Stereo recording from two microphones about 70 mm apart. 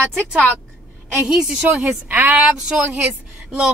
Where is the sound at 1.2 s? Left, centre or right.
Centre.